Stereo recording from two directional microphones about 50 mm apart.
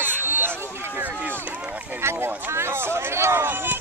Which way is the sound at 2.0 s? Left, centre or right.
Right.